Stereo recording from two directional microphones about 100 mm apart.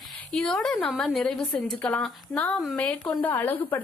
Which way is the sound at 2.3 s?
15° left (ahead or behind).